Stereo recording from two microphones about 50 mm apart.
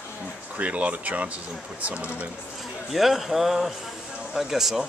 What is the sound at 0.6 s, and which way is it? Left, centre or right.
Speech, right.